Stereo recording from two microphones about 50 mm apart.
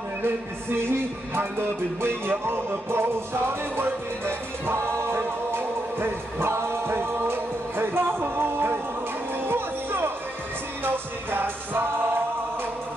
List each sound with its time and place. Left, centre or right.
0.8 s music: right